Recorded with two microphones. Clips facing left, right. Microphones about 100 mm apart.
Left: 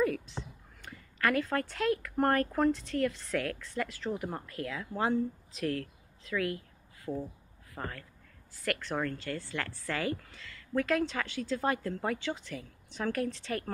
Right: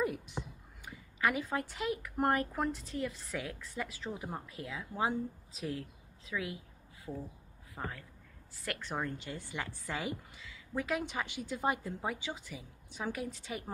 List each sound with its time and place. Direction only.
0.0 s a sound: 15° right (ahead or behind)
2.1 s speech: 10° right (ahead or behind)
2.7 s a woman's voice: 90° left
3.3 s speech: 15° right (ahead or behind)
4.5 s a woman's voice: 90° left
4.7 s speech: 5° right (ahead or behind)
5.5 s speech: 90° left
5.8 s a woman's voice: 10° right (ahead or behind)
7.1 s speech: 10° left (ahead or behind)
7.7 s speech: 10° right (ahead or behind)